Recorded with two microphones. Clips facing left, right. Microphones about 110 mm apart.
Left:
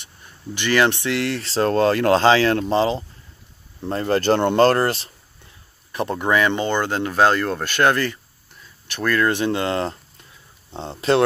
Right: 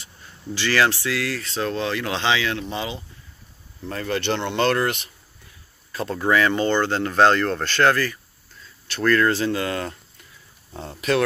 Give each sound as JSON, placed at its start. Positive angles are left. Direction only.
{"t": 0.6, "sound": "speech", "side_deg": 20}
{"t": 1.6, "sound": "speech", "side_deg": 45}
{"t": 5.9, "sound": "speech", "side_deg": 20}